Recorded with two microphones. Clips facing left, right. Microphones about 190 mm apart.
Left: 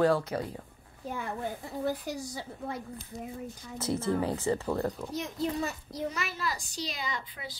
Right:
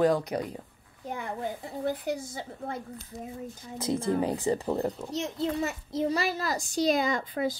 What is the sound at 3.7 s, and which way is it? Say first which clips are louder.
Speech: right 2 dB; 15° right (ahead or behind).